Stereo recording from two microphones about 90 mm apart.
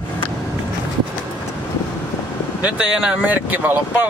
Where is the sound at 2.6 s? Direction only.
15° right (ahead or behind).